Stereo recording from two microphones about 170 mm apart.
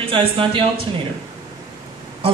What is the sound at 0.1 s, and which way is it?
Speech, 30° right (ahead or behind).